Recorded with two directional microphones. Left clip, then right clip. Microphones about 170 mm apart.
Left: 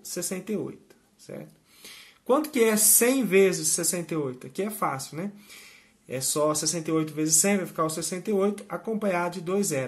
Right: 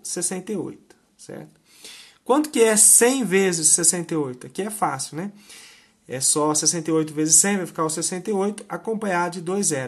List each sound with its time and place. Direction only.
0.0 s speech: 35° right (ahead or behind)